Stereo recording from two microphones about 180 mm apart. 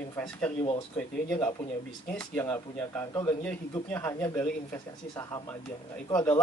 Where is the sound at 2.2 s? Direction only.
10° left (ahead or behind).